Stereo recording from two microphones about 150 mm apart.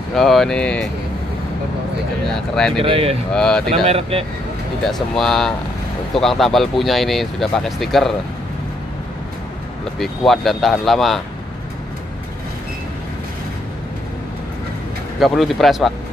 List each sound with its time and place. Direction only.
0.1 s speech: centre (ahead or behind)
2.8 s speech: 40° right (ahead or behind)
3.3 s speech: 5° left (ahead or behind)
3.8 s speech: 40° right (ahead or behind)
4.8 s speech: centre (ahead or behind)
9.9 s speech: centre (ahead or behind)
15.1 s speech: centre (ahead or behind)